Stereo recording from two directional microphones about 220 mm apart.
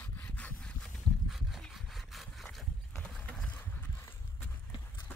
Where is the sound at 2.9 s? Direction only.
5° left (ahead or behind).